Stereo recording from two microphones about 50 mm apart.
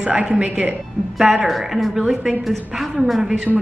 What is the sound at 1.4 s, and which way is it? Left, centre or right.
A woman's voice, centre.